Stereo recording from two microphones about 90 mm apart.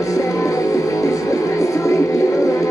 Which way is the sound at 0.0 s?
35° left (ahead or behind).